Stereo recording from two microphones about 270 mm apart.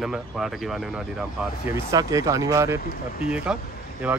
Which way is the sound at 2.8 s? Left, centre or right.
Left.